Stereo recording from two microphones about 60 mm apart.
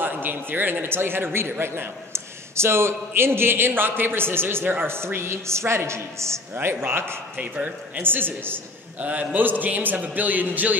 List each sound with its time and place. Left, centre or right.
0.0 s a man's voice: right
6.5 s a woman's voice: right
7.3 s a man's voice: right
9.0 s a man's voice: right